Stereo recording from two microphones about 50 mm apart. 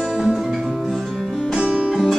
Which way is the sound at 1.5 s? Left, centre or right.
Right.